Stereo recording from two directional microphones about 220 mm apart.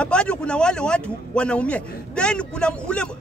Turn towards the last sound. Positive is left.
turn(degrees=5)  # may be behind; listen again after turning